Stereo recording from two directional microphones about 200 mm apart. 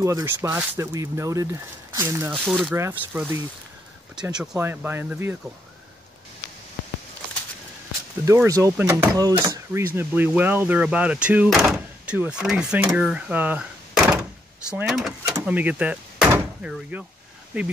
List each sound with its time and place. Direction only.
0.0 s speech: 15° right (ahead or behind)
2.3 s speech: centre (ahead or behind)
8.3 s speech: 15° right (ahead or behind)